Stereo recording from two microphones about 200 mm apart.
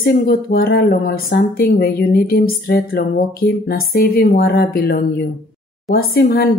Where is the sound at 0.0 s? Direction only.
50° left (ahead or behind).